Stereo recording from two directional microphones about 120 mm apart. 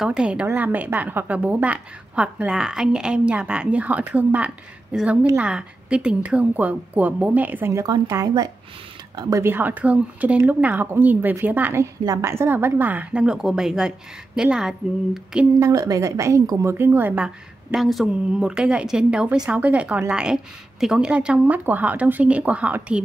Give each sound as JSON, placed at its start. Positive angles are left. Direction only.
{"t": 0.0, "sound": "a woman's voice", "side_deg": -5}
{"t": 7.8, "sound": "speech", "side_deg": -30}
{"t": 9.4, "sound": "a woman's voice", "side_deg": -15}
{"t": 15.6, "sound": "a woman's voice", "side_deg": -30}
{"t": 17.7, "sound": "a woman's voice", "side_deg": 0}